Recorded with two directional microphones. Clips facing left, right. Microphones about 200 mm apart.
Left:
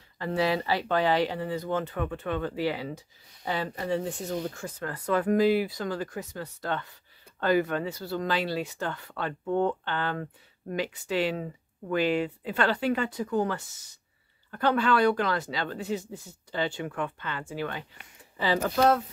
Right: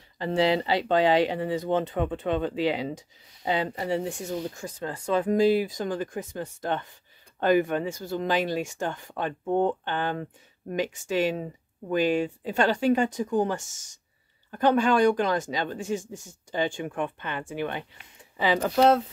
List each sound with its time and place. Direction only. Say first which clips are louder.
0.2 s speech: right 3 dB; 20° right (ahead or behind)
4.8 s speech: right 1 dB; 25° right (ahead or behind)
12.5 s speech: right 4 dB; 15° right (ahead or behind)
15.8 s speech: right 2 dB; 45° right (ahead or behind)
16.5 s speech: right 2 dB; 15° right (ahead or behind)